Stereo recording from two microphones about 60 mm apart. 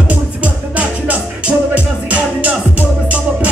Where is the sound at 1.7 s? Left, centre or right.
Right.